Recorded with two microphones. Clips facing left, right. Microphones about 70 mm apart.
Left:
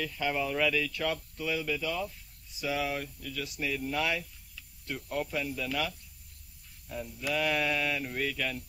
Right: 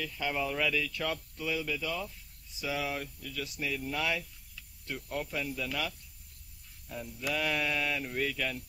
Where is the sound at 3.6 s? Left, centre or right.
Centre.